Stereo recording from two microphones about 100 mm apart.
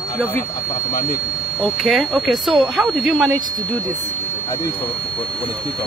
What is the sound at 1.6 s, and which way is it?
Speech, centre (ahead or behind).